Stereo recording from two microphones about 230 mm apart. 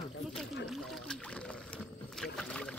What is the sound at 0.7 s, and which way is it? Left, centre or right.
Rowboat, centre.